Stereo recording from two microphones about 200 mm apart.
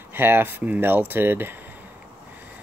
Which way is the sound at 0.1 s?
10° right (ahead or behind).